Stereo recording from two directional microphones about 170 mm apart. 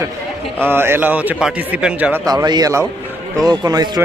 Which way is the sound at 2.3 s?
25° right (ahead or behind).